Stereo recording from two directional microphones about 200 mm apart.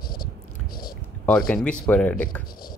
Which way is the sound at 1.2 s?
5° left (ahead or behind).